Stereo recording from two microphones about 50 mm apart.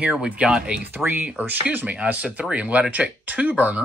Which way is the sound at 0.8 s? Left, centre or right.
Right.